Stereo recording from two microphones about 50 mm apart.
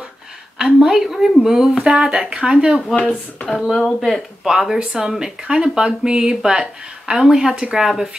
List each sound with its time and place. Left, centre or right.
0.6 s speech: centre
3.0 s speech: left
3.7 s speech: centre
4.5 s speech: centre